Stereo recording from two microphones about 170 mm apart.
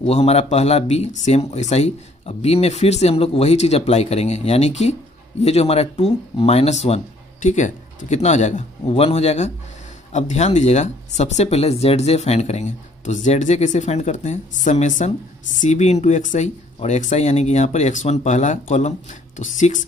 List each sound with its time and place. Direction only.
0.0 s speech: 35° left (ahead or behind)